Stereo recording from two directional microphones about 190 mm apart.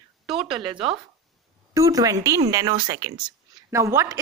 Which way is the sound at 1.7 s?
20° right (ahead or behind).